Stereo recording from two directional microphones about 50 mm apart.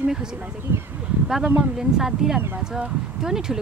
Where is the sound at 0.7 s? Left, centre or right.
Right.